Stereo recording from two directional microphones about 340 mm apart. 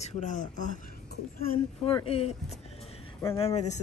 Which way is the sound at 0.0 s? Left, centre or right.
Left.